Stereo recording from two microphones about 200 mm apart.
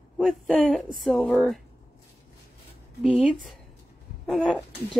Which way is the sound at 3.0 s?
5° right (ahead or behind).